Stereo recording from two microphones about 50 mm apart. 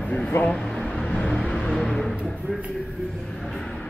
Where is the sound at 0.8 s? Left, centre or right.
Centre.